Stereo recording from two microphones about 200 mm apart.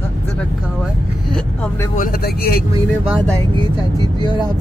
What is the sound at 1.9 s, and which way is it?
Speech, 45° left (ahead or behind).